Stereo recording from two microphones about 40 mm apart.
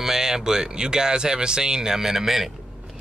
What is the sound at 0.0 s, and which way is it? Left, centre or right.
A man's voice, centre.